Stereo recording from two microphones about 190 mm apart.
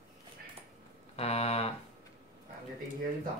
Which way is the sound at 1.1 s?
35° left (ahead or behind).